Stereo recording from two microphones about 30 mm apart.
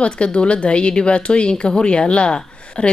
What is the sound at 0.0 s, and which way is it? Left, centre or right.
Speech, left.